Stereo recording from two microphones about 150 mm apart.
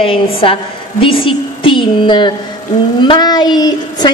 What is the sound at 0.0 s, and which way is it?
A woman's voice, 35° left (ahead or behind).